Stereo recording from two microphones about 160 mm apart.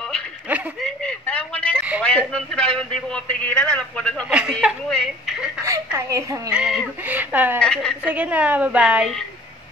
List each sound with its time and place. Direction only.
0.8 s a sound: 10° left (ahead or behind)
1.8 s a sound: 5° right (ahead or behind)
2.0 s a man's voice: 5° left (ahead or behind)
4.3 s a woman's voice: 5° right (ahead or behind)
5.7 s a woman's voice: 20° right (ahead or behind)
6.5 s speech: 5° right (ahead or behind)
7.6 s a woman's voice: 5° left (ahead or behind)
8.0 s speech: 10° right (ahead or behind)